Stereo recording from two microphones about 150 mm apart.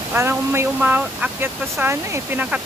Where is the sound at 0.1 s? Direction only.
15° right (ahead or behind).